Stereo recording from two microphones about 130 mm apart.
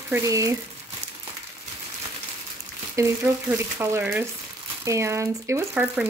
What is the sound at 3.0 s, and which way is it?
Speech, 20° right (ahead or behind).